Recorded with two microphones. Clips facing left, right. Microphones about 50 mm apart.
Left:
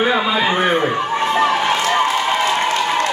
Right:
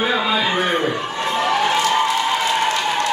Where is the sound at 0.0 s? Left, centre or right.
Centre.